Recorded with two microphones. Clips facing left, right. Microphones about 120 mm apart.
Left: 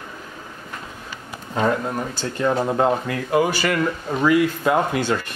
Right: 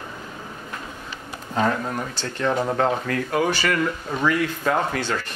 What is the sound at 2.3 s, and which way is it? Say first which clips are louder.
Speech: left 2 dB; 5° left (ahead or behind).